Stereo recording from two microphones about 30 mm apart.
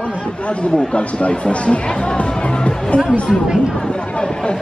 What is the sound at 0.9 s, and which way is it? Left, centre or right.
A man's voice, left.